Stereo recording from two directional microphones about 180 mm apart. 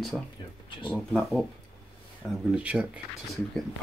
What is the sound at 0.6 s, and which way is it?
Speech, 25° left (ahead or behind).